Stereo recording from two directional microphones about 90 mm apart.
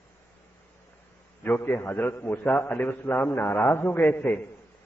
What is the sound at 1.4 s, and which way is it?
A man's voice, 25° left (ahead or behind).